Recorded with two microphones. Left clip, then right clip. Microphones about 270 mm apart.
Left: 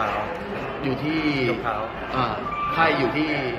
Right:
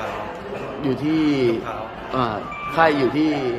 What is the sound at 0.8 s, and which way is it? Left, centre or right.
A man's voice, right.